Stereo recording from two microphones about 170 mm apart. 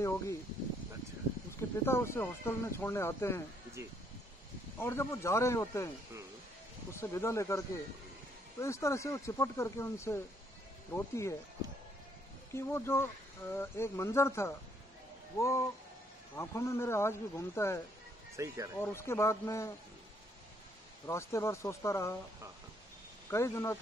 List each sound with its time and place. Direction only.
1.6 s speech: 15° left (ahead or behind)
4.7 s speech: 15° left (ahead or behind)
6.9 s speech: 15° left (ahead or behind)
12.5 s speech: 15° left (ahead or behind)
18.3 s speech: 20° right (ahead or behind)
18.8 s speech: 15° left (ahead or behind)
21.1 s speech: 15° left (ahead or behind)
23.3 s speech: 15° left (ahead or behind)